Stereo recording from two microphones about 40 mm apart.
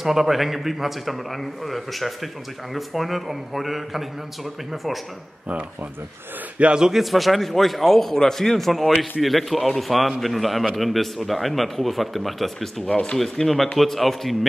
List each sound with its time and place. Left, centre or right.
0.0 s a man's voice: centre
6.8 s a man's voice: centre
12.8 s speech: left
13.2 s a man's voice: centre